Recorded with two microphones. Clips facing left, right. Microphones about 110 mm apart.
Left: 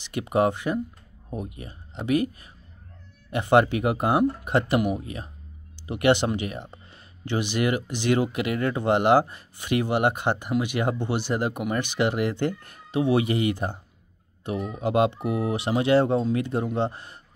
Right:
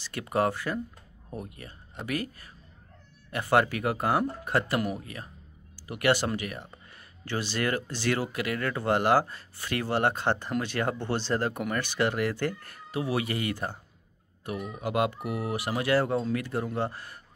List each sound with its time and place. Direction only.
0.0 s speech: 20° left (ahead or behind)